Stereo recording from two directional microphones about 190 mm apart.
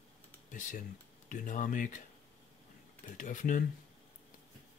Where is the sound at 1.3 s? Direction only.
45° left (ahead or behind).